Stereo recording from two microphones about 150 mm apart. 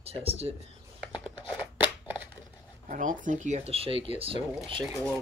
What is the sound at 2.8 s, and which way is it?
Speech, 60° right (ahead or behind).